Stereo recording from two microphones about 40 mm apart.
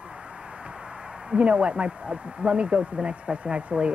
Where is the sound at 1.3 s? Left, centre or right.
Right.